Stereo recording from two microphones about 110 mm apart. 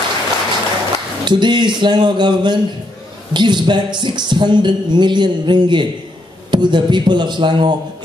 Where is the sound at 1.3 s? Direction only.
45° right (ahead or behind).